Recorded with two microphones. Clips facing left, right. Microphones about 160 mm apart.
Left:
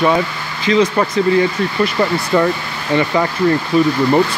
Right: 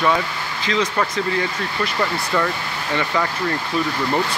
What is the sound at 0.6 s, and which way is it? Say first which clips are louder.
Speech: left 8 dB; 10° left (ahead or behind).